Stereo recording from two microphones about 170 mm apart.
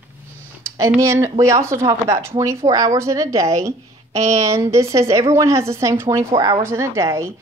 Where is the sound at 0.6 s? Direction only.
15° right (ahead or behind).